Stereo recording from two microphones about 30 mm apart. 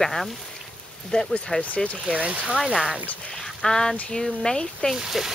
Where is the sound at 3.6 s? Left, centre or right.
Centre.